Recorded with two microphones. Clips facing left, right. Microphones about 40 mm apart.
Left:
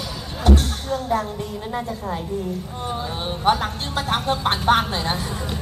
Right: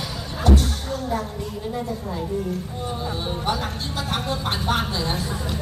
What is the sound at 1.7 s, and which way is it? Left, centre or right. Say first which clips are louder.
Speech: left 2 dB; left.